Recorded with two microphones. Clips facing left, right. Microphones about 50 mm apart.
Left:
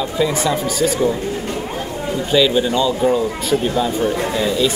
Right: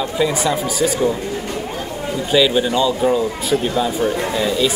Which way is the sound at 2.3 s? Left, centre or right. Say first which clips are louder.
Even; centre.